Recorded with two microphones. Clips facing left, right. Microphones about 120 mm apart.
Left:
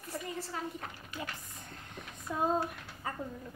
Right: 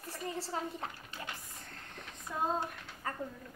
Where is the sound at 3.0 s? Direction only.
15° left (ahead or behind).